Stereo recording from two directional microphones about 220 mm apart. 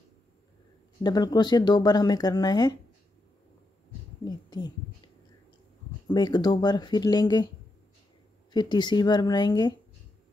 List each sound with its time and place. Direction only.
1.0 s speech: 20° left (ahead or behind)
4.2 s speech: 20° left (ahead or behind)